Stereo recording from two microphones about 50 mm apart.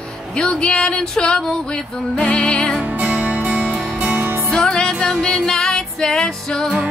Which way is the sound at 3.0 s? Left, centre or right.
Right.